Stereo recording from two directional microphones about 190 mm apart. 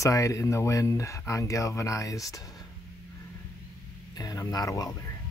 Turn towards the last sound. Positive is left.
turn(degrees=20)  # may be behind; listen again after turning